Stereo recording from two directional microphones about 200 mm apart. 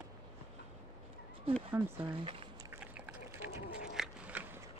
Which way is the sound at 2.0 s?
25° right (ahead or behind).